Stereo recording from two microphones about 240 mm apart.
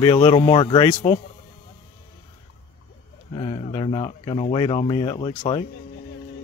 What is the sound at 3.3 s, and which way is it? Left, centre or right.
Speech, left.